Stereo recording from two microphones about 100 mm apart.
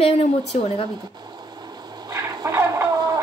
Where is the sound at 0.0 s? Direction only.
85° left.